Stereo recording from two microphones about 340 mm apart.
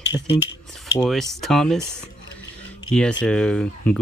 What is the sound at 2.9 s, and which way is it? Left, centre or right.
Speech, centre.